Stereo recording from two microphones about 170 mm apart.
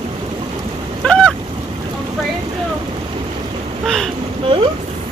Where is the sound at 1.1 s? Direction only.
5° left (ahead or behind).